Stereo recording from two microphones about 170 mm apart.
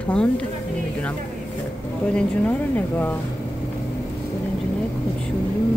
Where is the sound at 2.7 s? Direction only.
10° left (ahead or behind).